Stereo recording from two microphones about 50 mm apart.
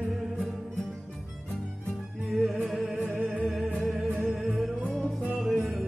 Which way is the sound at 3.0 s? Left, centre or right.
Right.